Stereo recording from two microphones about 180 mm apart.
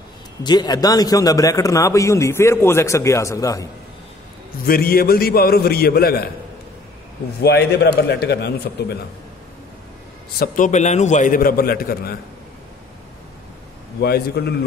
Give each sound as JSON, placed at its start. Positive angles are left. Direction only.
{"t": 0.4, "sound": "a man's voice", "side_deg": 25}
{"t": 4.6, "sound": "a man's voice", "side_deg": 55}
{"t": 7.4, "sound": "a man's voice", "side_deg": 65}
{"t": 10.4, "sound": "a man's voice", "side_deg": 45}
{"t": 14.0, "sound": "a man's voice", "side_deg": 60}